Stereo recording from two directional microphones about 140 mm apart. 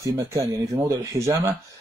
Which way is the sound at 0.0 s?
20° right (ahead or behind).